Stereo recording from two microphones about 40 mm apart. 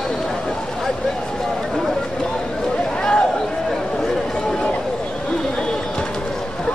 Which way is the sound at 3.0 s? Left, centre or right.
Left.